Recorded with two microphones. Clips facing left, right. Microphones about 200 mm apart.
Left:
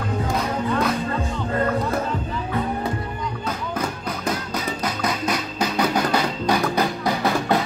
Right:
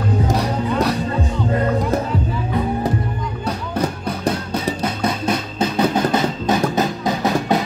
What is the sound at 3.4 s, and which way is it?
Music, 35° right (ahead or behind).